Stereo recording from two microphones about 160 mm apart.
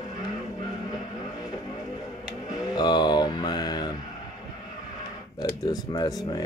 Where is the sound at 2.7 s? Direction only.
25° left (ahead or behind).